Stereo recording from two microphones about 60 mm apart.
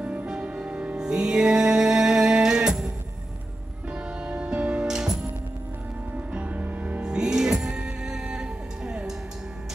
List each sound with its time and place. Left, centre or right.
0.0 s music: centre
3.9 s music: centre
4.8 s music: centre
6.3 s music: right
7.0 s music: centre